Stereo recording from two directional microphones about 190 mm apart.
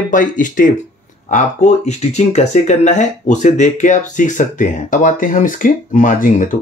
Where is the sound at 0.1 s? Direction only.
40° left (ahead or behind).